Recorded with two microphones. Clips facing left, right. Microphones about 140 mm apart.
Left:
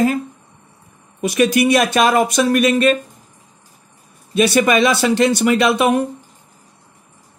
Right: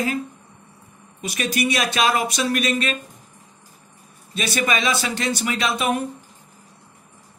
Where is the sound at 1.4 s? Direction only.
50° left (ahead or behind).